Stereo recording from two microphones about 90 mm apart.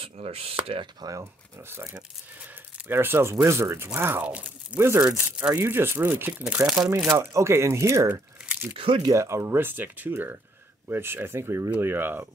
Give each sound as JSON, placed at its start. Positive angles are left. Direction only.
{"t": 0.0, "sound": "speech", "side_deg": -90}
{"t": 1.0, "sound": "speech", "side_deg": -35}
{"t": 2.9, "sound": "speech", "side_deg": -25}
{"t": 4.7, "sound": "speech", "side_deg": -30}
{"t": 5.0, "sound": "speech", "side_deg": -10}
{"t": 5.5, "sound": "speech", "side_deg": -25}
{"t": 7.1, "sound": "speech", "side_deg": -30}
{"t": 8.1, "sound": "crumpling", "side_deg": -20}
{"t": 8.7, "sound": "speech", "side_deg": -85}
{"t": 9.0, "sound": "speech", "side_deg": -35}